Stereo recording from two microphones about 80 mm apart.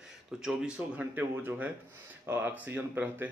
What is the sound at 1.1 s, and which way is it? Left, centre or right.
Speech, right.